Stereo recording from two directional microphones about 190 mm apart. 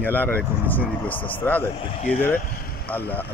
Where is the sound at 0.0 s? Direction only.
10° left (ahead or behind).